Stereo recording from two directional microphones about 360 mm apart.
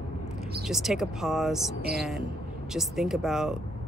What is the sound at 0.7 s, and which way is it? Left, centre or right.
Speech, centre.